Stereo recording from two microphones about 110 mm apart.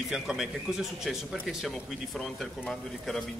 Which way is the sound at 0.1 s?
5° right (ahead or behind).